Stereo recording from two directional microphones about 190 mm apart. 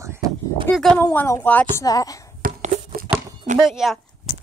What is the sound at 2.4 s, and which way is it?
Tearing, 45° right (ahead or behind).